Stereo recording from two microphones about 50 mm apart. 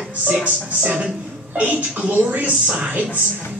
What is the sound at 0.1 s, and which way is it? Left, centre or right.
A woman's voice, right.